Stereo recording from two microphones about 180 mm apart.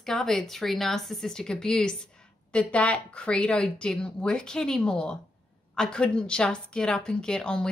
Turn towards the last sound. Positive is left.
turn(degrees=5)  # may be behind; listen again after turning